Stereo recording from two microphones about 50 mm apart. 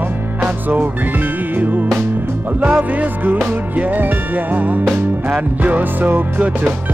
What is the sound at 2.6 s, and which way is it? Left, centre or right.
Music, right.